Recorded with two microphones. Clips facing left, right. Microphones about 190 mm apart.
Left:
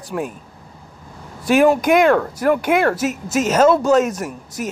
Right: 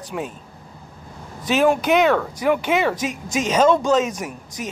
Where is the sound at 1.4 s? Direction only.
10° left (ahead or behind).